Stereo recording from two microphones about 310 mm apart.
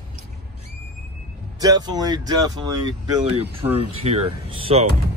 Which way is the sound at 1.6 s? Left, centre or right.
Centre.